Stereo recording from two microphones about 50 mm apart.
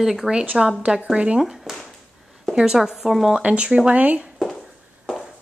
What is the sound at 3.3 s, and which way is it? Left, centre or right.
Speech, right.